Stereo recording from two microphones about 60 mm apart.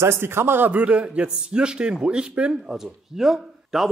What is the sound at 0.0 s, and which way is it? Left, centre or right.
A man's voice, right.